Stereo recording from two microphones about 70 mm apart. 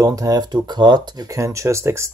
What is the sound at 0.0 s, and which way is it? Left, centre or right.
Speech, right.